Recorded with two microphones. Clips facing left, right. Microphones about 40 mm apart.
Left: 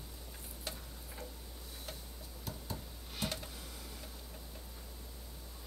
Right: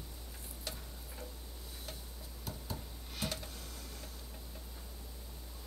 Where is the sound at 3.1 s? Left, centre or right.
Centre.